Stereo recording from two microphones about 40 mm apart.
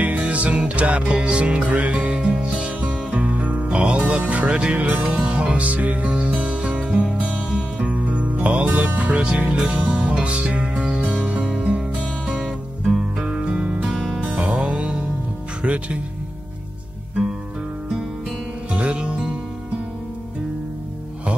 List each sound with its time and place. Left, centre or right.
0.0 s music: right
2.1 s music: right
6.3 s music: right
8.7 s speech: right
9.6 s music: centre
12.3 s music: centre
13.4 s music: right
13.8 s music: centre
14.3 s music: right
15.6 s speech: right
18.7 s music: right